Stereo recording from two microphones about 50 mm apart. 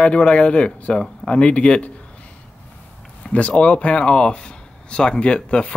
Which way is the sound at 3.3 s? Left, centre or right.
Left.